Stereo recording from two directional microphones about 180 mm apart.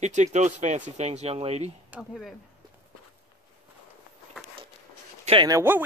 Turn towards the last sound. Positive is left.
turn(degrees=-15)  # may be behind; listen again after turning